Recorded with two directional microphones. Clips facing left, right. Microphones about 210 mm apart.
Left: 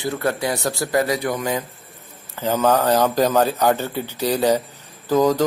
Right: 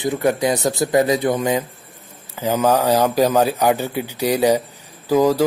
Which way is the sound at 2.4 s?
10° right (ahead or behind).